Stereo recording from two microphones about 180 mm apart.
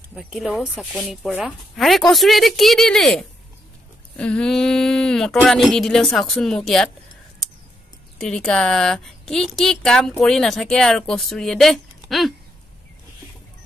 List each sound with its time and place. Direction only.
0.1 s a woman's voice: centre (ahead or behind)
8.2 s a woman's voice: 5° left (ahead or behind)